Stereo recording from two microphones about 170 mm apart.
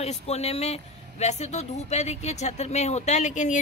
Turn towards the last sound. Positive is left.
turn(degrees=45)  # may be behind; listen again after turning